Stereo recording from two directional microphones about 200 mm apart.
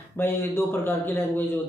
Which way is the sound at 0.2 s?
10° left (ahead or behind).